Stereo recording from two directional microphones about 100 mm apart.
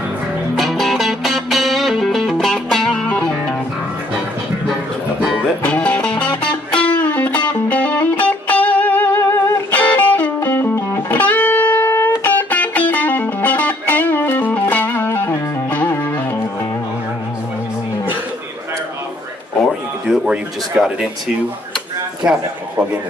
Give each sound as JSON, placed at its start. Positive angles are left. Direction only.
{"t": 0.6, "sound": "music", "side_deg": 0}
{"t": 5.6, "sound": "music", "side_deg": 15}
{"t": 20.1, "sound": "a sound", "side_deg": -5}
{"t": 22.2, "sound": "a man's voice", "side_deg": -10}